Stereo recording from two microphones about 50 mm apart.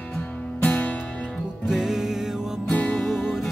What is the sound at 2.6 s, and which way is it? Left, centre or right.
Music, left.